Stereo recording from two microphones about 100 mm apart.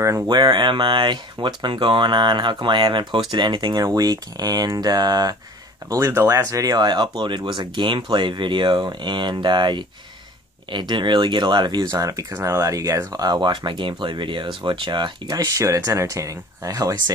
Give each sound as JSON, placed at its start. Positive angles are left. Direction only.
{"t": 0.3, "sound": "speech", "side_deg": -50}
{"t": 3.8, "sound": "speech", "side_deg": -40}
{"t": 5.9, "sound": "speech", "side_deg": -30}